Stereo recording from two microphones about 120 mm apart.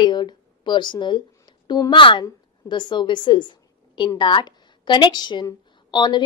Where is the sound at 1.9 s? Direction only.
45° left (ahead or behind).